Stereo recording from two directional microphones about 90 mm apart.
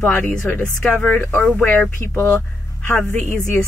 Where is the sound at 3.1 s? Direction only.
20° left (ahead or behind).